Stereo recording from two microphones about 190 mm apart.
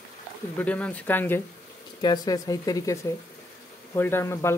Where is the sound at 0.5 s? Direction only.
5° left (ahead or behind).